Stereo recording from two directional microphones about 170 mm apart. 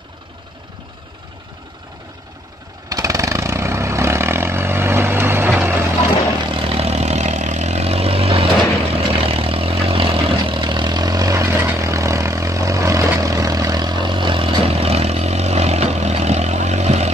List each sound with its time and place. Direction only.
2.9 s vehicle: 20° right (ahead or behind)
6.5 s vehicle: 35° right (ahead or behind)